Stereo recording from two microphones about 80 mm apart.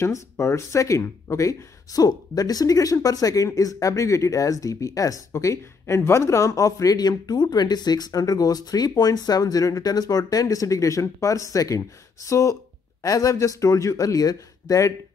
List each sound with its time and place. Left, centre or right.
0.0 s speech: left